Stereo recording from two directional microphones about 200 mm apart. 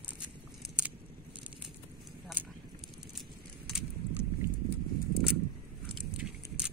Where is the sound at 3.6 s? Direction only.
Centre (ahead or behind).